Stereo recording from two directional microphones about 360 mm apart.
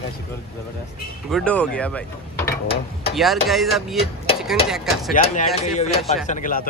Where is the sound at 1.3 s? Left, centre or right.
Centre.